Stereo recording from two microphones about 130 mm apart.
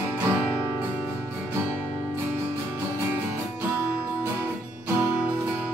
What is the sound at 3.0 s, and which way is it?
Music, 15° right (ahead or behind).